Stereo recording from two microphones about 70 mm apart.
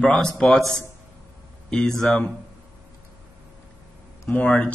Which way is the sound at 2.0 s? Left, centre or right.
Centre.